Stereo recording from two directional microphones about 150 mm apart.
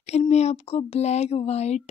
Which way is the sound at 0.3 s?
45° left (ahead or behind).